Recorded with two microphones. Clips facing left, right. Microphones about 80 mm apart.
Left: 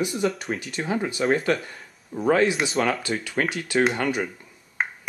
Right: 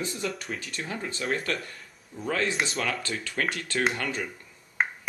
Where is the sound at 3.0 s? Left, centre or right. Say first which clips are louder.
Left 4 dB; centre.